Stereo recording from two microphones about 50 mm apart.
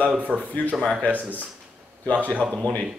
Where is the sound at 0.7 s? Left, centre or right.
Centre.